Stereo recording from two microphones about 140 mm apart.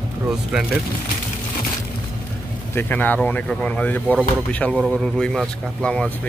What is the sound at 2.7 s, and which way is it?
Speech, 10° left (ahead or behind).